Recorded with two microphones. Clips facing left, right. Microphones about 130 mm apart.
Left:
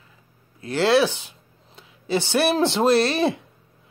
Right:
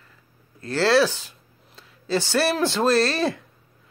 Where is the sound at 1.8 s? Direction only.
20° left (ahead or behind).